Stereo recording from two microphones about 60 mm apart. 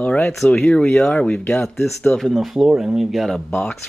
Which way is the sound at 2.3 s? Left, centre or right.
Centre.